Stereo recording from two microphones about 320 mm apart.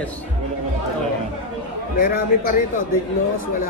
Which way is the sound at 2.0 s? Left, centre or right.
Left.